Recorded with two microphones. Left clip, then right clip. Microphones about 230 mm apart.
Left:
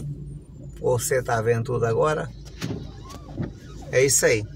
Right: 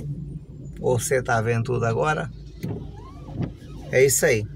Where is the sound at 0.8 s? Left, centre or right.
Centre.